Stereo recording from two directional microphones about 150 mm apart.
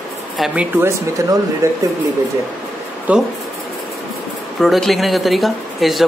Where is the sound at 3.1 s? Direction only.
10° right (ahead or behind).